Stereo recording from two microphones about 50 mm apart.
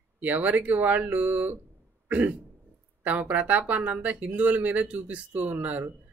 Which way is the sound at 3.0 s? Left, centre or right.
Right.